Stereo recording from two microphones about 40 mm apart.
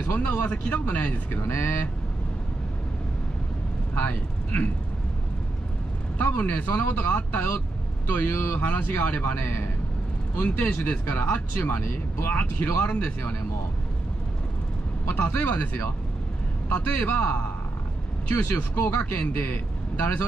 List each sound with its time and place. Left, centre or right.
0.0 s speech: left
1.4 s speech: left
3.9 s speech: left
6.1 s speech: left
9.3 s speech: left
10.3 s speech: left
12.9 s speech: left
15.0 s speech: left
18.3 s speech: left
19.1 s a man's voice: left